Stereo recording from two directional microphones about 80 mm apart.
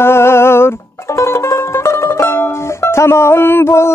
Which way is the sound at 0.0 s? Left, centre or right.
Left.